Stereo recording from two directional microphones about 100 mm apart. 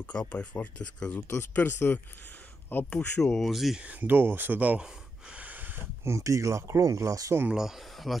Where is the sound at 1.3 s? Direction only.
25° left (ahead or behind).